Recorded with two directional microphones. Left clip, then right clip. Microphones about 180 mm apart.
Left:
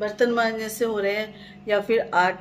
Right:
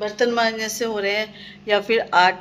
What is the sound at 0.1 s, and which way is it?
A woman's voice, 10° left (ahead or behind).